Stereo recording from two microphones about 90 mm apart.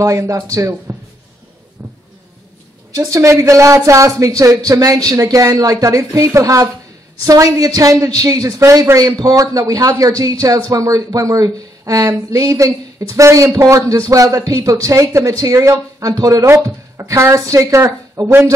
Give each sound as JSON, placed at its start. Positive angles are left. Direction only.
{"t": 0.0, "sound": "speech", "side_deg": -35}
{"t": 1.8, "sound": "a sound", "side_deg": -30}
{"t": 3.0, "sound": "speech", "side_deg": -35}